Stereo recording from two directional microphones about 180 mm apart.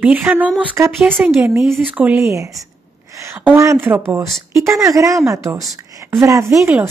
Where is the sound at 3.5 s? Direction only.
15° right (ahead or behind).